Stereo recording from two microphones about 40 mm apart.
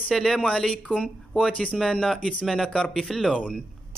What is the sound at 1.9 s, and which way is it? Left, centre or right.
Speech, centre.